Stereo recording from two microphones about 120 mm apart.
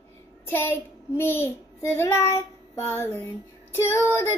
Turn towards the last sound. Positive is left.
turn(degrees=25)  # may be behind; listen again after turning